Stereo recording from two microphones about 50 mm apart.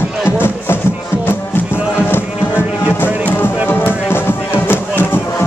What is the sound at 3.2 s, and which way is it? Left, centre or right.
Music, left.